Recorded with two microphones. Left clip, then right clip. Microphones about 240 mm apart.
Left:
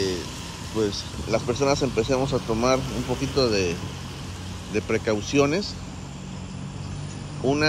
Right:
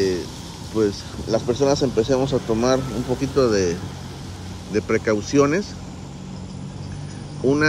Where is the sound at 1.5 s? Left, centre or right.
Left.